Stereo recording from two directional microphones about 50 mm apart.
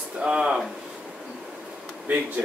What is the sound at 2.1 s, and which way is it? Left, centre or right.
Speech, right.